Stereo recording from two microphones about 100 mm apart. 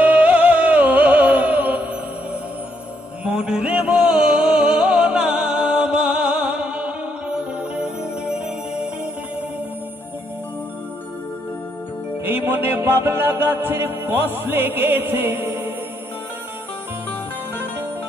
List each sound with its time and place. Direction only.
0.0 s music: 15° right (ahead or behind)
3.3 s music: 10° right (ahead or behind)
12.3 s music: 20° right (ahead or behind)